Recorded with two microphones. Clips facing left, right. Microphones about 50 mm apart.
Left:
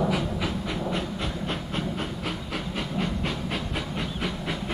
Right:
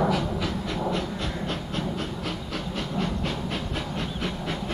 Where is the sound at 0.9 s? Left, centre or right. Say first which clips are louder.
Right 1 dB; centre.